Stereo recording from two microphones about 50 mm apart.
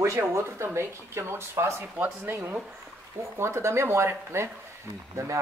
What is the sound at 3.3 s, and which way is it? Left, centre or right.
Speech, right.